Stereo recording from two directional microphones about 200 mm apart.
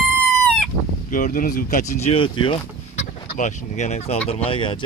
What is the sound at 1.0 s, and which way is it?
Speech, 40° left (ahead or behind).